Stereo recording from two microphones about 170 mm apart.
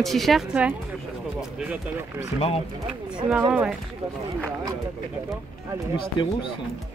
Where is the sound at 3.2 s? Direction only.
10° right (ahead or behind).